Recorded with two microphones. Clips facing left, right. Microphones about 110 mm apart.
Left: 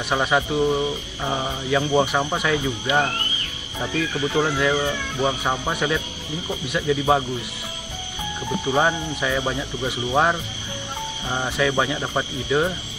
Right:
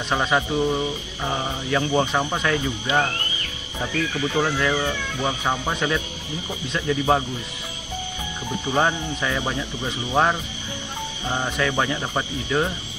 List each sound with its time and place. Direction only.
0.1 s speech: 15° left (ahead or behind)
4.1 s speech: 20° left (ahead or behind)
8.6 s speech: 15° left (ahead or behind)